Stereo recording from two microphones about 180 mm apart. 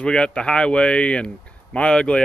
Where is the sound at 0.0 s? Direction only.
5° left (ahead or behind).